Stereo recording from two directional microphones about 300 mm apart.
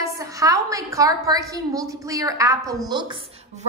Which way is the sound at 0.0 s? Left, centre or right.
Centre.